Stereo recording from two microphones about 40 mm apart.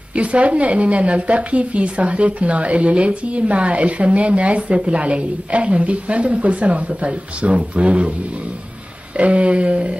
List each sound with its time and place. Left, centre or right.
0.1 s speech: right
9.1 s speech: right